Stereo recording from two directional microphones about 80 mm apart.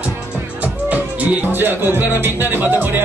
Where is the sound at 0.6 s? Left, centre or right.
Centre.